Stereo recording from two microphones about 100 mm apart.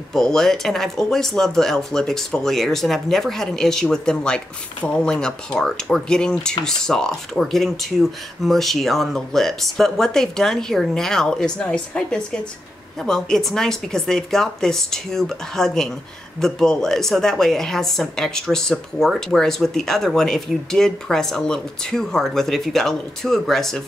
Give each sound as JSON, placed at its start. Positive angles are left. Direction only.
{"t": 0.1, "sound": "a woman's voice", "side_deg": 5}